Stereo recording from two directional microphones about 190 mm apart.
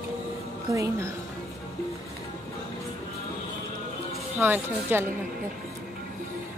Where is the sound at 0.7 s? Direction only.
15° right (ahead or behind).